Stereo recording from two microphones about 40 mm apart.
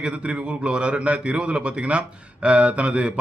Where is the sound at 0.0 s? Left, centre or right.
Right.